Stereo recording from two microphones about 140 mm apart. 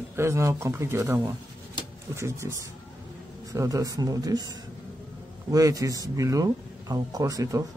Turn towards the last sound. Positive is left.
turn(degrees=-25)  # may be behind; listen again after turning